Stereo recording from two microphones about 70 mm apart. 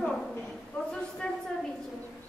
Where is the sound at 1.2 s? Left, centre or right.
Centre.